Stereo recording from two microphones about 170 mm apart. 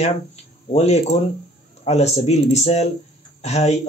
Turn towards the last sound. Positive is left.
turn(degrees=40)  # may be behind; listen again after turning